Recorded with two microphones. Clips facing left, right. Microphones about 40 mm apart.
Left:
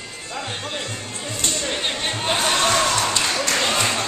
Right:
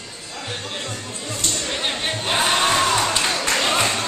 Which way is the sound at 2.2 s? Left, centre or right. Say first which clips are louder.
Right 1 dB; centre.